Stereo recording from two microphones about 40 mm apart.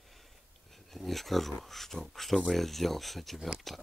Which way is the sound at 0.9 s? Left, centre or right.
Centre.